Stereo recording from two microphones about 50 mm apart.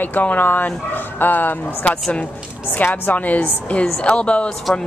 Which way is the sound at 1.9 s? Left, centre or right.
Left.